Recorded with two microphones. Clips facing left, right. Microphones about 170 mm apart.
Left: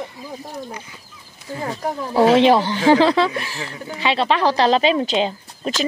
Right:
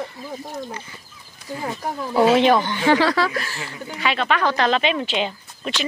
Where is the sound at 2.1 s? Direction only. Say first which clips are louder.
Left 2 dB; 30° left (ahead or behind).